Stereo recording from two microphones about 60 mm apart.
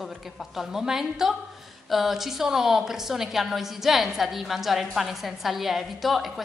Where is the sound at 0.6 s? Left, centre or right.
Centre.